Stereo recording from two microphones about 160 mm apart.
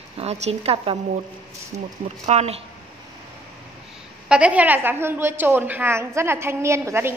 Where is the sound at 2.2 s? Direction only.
40° right (ahead or behind).